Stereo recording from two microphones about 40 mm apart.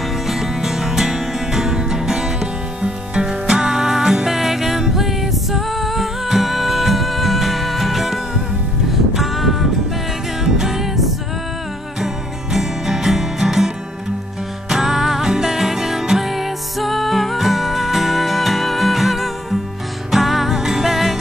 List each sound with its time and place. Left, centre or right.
0.3 s music: centre
12.5 s music: centre
14.7 s music: centre